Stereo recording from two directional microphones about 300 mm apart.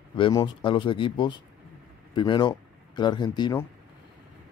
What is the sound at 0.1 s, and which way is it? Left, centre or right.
Speech, centre.